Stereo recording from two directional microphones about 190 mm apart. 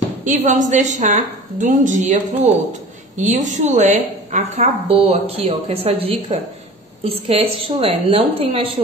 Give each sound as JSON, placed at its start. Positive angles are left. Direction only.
{"t": 0.2, "sound": "a woman's voice", "side_deg": -40}